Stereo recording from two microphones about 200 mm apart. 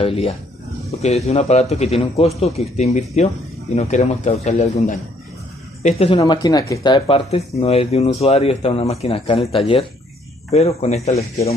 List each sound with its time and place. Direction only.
0.0 s speech: 30° left (ahead or behind)